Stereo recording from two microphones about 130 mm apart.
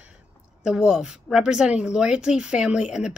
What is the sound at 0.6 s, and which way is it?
A woman's voice, 5° right (ahead or behind).